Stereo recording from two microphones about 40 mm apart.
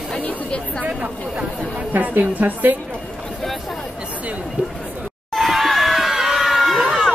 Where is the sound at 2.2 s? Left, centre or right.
Right.